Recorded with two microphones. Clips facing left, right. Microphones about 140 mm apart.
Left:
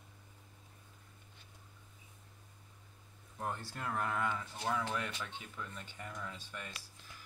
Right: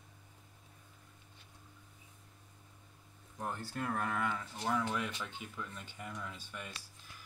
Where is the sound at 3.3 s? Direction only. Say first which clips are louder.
Right 1 dB; 10° left (ahead or behind).